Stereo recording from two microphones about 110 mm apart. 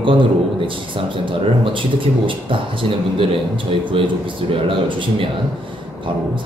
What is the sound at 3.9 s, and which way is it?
A man's voice, 50° right (ahead or behind).